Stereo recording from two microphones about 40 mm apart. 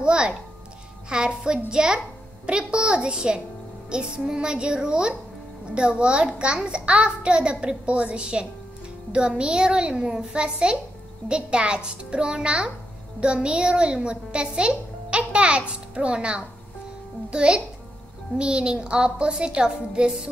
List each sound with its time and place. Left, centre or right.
0.0 s music: right
1.0 s a child's voice: right